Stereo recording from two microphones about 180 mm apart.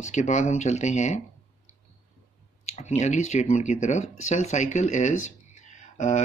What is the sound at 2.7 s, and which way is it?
Speech, 40° left (ahead or behind).